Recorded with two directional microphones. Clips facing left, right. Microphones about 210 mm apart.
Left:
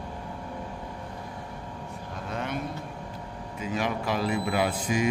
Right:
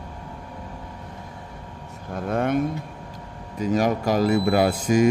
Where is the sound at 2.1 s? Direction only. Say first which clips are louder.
Right 11 dB; 50° right (ahead or behind).